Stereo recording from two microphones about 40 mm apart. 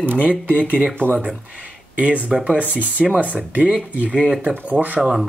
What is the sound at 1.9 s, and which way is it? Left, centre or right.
Speech, right.